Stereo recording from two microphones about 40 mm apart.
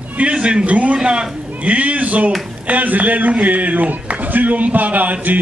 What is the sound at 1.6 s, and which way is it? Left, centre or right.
A man's voice, right.